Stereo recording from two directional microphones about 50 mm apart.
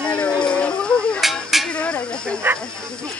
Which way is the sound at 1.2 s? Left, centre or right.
Centre.